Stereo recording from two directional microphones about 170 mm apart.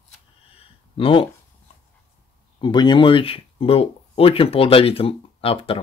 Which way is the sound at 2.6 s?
25° left (ahead or behind).